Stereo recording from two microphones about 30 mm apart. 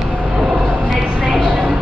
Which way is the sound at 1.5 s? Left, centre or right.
Right.